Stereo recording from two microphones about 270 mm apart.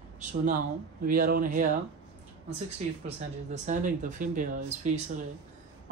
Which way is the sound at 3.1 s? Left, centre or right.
Right.